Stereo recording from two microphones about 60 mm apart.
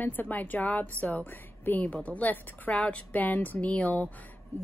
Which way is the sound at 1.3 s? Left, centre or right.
Left.